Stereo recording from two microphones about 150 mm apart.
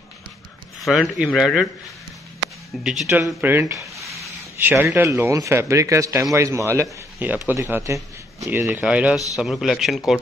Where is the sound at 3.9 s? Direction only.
20° right (ahead or behind).